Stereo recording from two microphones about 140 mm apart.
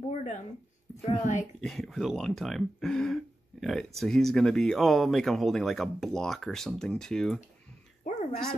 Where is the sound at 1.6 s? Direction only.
5° left (ahead or behind).